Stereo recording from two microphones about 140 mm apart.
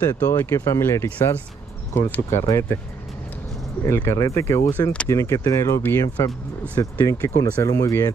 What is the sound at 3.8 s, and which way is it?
Speech, 20° left (ahead or behind).